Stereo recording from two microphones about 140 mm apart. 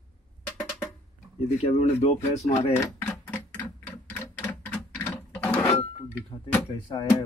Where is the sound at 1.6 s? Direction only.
50° left (ahead or behind).